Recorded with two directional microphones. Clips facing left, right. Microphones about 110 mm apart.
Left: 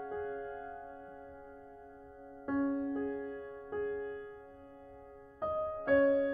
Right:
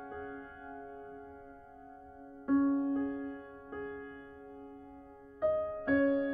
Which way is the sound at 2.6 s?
25° right (ahead or behind).